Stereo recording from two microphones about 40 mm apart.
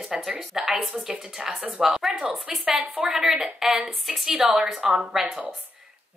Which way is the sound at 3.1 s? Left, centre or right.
Centre.